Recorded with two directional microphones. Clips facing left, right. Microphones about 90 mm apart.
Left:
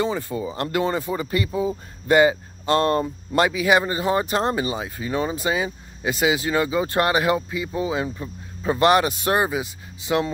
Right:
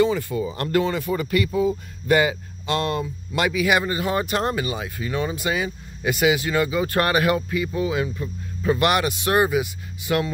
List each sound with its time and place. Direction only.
0.0 s speech: 30° left (ahead or behind)